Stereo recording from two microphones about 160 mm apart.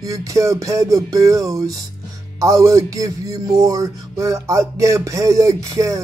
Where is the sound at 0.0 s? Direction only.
20° right (ahead or behind).